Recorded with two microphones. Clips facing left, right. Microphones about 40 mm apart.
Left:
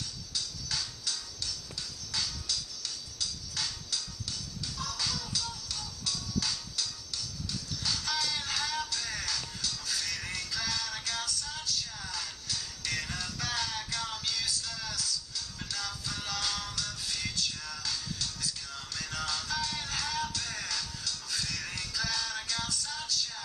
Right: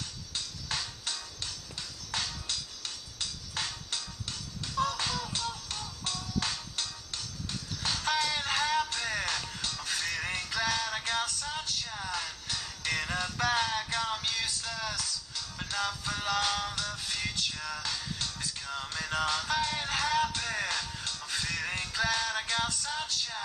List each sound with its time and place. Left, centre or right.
0.3 s music: right